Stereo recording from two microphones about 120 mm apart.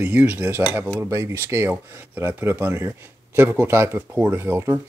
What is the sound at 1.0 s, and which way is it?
Speech, 25° right (ahead or behind).